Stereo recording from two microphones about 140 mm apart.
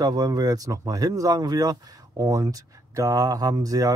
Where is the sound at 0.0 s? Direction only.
25° right (ahead or behind).